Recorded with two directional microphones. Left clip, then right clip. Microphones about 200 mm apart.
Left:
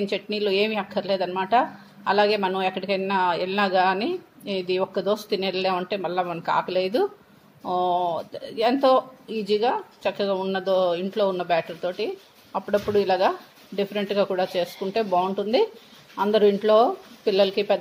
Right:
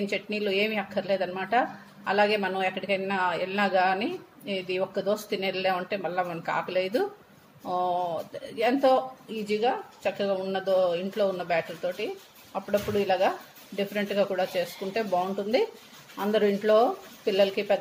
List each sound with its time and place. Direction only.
0.0 s a woman's voice: 25° left (ahead or behind)